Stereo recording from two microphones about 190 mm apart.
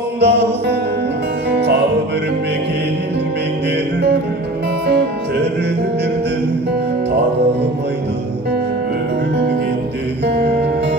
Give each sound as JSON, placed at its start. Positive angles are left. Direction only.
{"t": 0.2, "sound": "music", "side_deg": -65}
{"t": 10.2, "sound": "music", "side_deg": -60}